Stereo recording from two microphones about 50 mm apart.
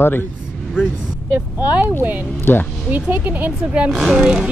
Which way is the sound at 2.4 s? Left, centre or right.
Left.